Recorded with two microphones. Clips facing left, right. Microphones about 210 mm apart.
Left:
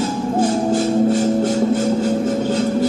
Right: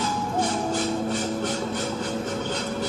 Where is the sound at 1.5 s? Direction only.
45° left (ahead or behind).